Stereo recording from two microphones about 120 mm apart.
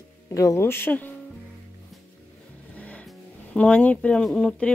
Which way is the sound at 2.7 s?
10° left (ahead or behind).